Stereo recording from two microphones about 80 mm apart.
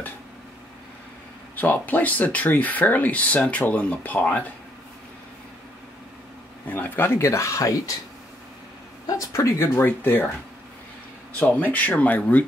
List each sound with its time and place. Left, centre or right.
1.5 s speech: left
6.7 s speech: left
7.2 s speech: left
9.0 s speech: left
9.6 s speech: left
11.3 s speech: centre